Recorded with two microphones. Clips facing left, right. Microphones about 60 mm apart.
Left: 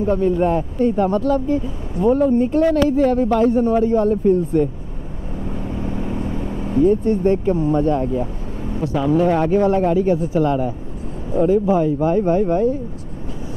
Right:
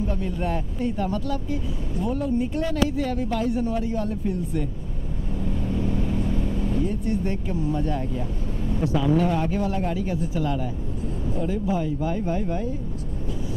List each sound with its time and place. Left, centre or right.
0.0 s speech: left
0.6 s speech: left
0.9 s speech: left
5.5 s vehicle: left
7.1 s speech: left
9.3 s speech: left
10.1 s speech: left
12.3 s speech: left